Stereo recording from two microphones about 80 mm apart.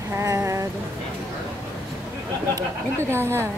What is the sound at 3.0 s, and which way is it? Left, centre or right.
Female singing, right.